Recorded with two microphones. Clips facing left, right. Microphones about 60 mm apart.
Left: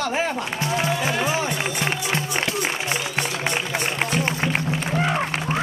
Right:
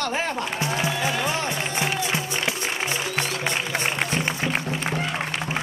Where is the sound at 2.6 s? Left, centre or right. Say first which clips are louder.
Left 2 dB; left.